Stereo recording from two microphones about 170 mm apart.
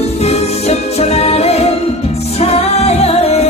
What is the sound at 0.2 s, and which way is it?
Music, 40° left (ahead or behind).